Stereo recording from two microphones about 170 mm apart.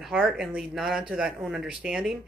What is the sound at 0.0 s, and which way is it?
Speech, 5° right (ahead or behind).